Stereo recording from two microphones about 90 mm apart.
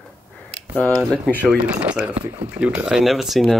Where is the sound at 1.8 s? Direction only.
15° right (ahead or behind).